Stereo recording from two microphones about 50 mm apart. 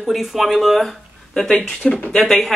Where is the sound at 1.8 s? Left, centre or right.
Left.